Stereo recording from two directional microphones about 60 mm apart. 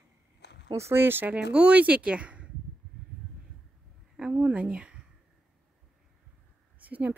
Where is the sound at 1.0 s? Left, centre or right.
Right.